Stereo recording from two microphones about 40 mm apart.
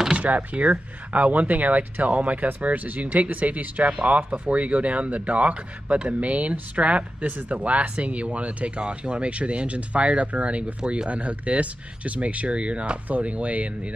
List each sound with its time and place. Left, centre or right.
0.2 s speech: right